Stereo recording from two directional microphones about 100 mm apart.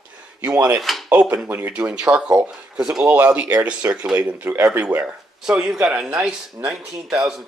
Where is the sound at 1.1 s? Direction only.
15° right (ahead or behind).